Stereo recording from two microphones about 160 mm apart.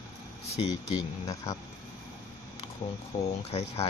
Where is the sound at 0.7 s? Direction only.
25° left (ahead or behind).